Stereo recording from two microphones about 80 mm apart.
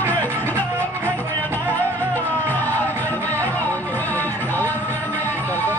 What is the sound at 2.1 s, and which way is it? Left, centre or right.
Music, left.